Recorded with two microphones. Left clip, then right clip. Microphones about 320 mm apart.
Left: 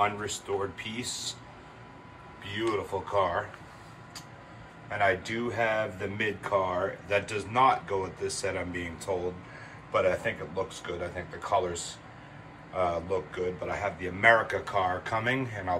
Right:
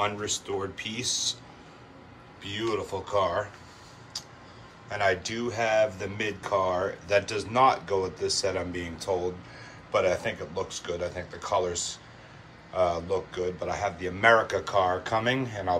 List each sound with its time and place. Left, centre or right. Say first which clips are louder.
0.5 s speech: left 3 dB; centre
2.4 s speech: right 1 dB; centre
4.8 s a man's voice: right 1 dB; centre